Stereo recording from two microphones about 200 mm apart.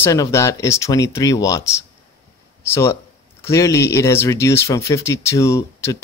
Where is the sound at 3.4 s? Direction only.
15° left (ahead or behind).